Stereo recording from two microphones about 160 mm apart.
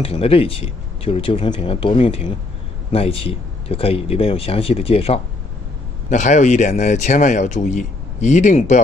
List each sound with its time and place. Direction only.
0.0 s speech: 35° left (ahead or behind)
6.0 s speech: 50° left (ahead or behind)